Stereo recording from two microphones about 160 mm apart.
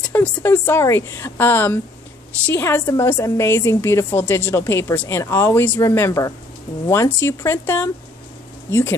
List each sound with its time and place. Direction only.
0.0 s a woman's voice: 10° left (ahead or behind)